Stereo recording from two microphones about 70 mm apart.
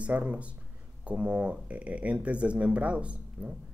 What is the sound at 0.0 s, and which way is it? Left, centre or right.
Speech, centre.